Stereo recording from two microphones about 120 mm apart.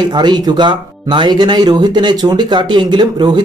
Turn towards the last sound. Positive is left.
turn(degrees=-40)  # may be behind; listen again after turning